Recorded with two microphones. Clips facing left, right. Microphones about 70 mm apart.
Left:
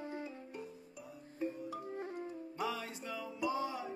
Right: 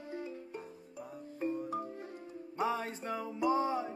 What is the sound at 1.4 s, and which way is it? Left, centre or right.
Music, right.